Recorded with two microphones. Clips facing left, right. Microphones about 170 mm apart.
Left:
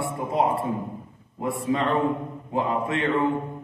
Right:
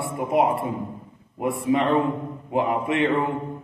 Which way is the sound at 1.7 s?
15° right (ahead or behind).